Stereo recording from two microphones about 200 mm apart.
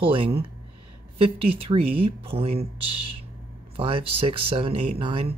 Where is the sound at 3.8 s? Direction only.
25° right (ahead or behind).